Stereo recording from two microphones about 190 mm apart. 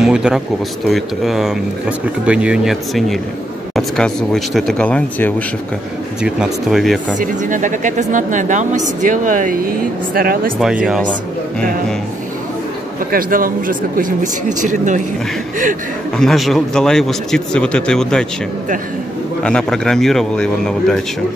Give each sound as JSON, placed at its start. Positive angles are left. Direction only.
{"t": 0.0, "sound": "speech", "side_deg": -5}
{"t": 7.2, "sound": "speech", "side_deg": -45}
{"t": 10.6, "sound": "speech", "side_deg": -5}
{"t": 13.1, "sound": "speech", "side_deg": -45}
{"t": 16.2, "sound": "speech", "side_deg": 0}
{"t": 19.4, "sound": "speech", "side_deg": 5}